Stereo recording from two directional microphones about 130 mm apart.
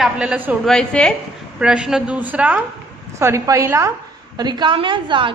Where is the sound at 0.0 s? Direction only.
10° right (ahead or behind).